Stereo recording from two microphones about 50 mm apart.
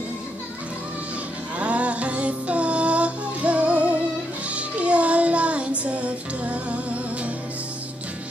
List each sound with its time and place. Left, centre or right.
1.6 s music: right